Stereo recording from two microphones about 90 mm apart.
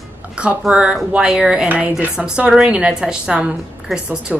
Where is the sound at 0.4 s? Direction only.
10° right (ahead or behind).